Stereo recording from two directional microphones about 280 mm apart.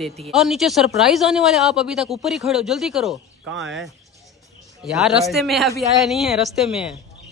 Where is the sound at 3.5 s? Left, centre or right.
Right.